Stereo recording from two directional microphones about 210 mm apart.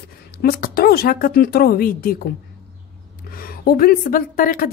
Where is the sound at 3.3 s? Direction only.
45° left (ahead or behind).